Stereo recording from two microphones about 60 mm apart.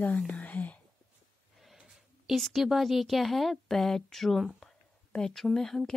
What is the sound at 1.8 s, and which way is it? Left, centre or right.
Speech, centre.